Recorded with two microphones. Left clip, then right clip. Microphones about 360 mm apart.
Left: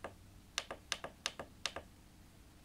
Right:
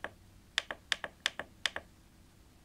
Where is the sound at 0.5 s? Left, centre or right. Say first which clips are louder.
Right 7 dB; centre.